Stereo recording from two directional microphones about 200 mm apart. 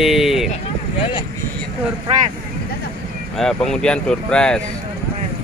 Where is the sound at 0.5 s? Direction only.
25° left (ahead or behind).